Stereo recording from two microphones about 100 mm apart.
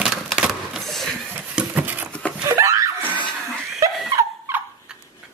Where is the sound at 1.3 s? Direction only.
10° right (ahead or behind).